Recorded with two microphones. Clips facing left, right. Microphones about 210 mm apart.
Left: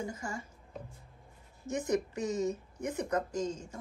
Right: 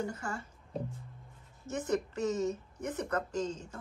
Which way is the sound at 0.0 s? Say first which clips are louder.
Right 1 dB; 10° left (ahead or behind).